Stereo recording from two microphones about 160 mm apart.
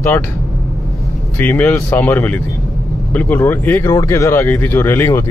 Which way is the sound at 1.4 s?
15° left (ahead or behind).